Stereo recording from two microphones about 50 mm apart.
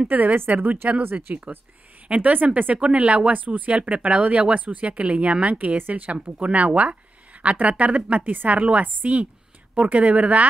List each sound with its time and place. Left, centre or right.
0.1 s a woman's voice: right